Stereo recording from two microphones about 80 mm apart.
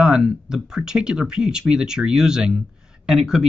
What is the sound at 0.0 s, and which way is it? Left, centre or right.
Speech, centre.